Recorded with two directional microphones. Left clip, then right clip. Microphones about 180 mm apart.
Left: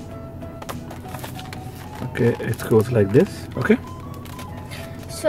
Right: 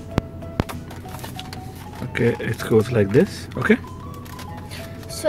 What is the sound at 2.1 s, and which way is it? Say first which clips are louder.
Speech: even; centre (ahead or behind).